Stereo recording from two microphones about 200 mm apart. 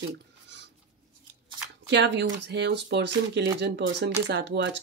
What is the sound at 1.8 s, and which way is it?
Speech, 60° right (ahead or behind).